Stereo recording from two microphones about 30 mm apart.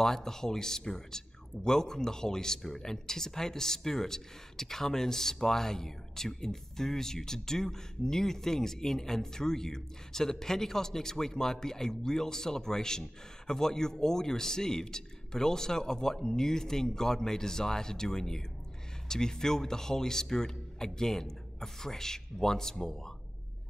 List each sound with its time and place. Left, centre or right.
0.0 s speech: centre